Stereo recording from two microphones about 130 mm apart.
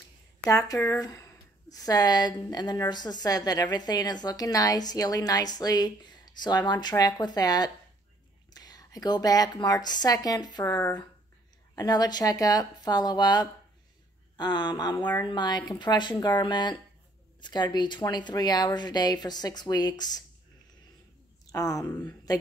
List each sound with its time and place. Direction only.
0.5 s a woman's voice: 25° left (ahead or behind)
11.7 s a woman's voice: 30° left (ahead or behind)
21.5 s speech: 25° left (ahead or behind)